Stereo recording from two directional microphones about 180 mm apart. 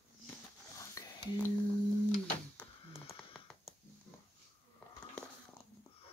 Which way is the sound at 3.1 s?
10° left (ahead or behind).